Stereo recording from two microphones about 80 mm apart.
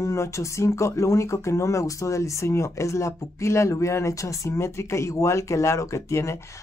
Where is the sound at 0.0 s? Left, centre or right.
Left.